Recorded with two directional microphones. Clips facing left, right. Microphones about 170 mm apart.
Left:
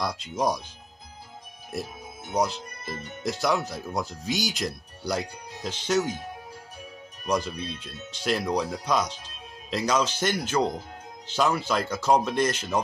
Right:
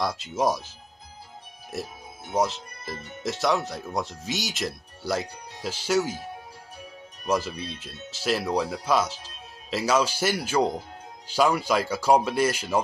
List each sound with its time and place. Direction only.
0.0 s speech: centre (ahead or behind)
7.2 s speech: 5° right (ahead or behind)